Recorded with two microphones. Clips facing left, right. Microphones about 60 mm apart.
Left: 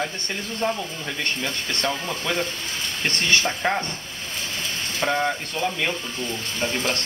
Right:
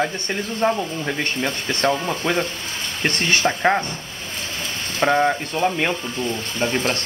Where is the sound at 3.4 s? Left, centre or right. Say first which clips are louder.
Right 6 dB; right.